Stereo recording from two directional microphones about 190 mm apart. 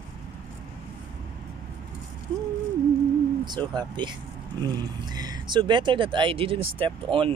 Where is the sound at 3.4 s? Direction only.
25° right (ahead or behind).